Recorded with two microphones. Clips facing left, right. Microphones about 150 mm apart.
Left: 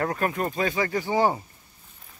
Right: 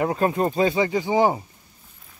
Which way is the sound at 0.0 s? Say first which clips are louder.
Right 5 dB; 25° right (ahead or behind).